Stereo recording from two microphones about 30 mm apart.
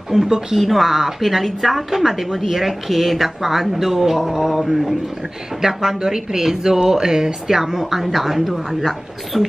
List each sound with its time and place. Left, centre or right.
0.1 s a woman's voice: right
0.6 s a woman's voice: centre